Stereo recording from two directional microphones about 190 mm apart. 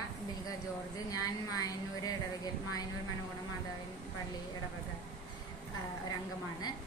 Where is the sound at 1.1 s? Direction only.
20° left (ahead or behind).